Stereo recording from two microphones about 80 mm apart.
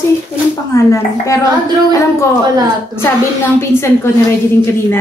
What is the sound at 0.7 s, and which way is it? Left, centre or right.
Speech, left.